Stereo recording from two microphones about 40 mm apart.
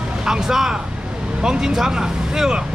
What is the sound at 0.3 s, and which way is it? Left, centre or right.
Speech, centre.